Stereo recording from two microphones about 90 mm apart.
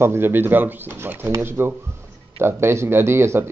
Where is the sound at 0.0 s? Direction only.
25° right (ahead or behind).